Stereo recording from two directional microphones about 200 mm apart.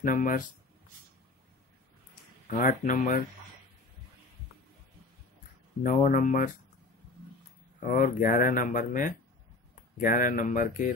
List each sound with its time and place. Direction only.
0.0 s speech: 40° left (ahead or behind)
2.5 s speech: 40° left (ahead or behind)
5.9 s speech: 40° left (ahead or behind)
7.8 s speech: 40° left (ahead or behind)